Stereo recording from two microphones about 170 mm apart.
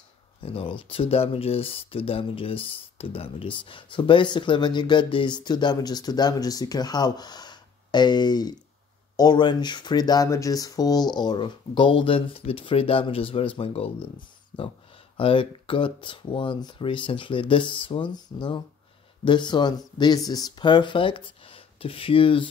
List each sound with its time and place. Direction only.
0.4 s speech: 30° left (ahead or behind)